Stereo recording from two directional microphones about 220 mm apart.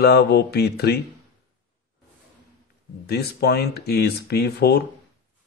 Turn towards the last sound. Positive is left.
turn(degrees=45)  # may be behind; listen again after turning